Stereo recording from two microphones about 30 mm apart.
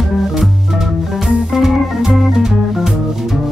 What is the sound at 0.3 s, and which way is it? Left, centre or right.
Organ, centre.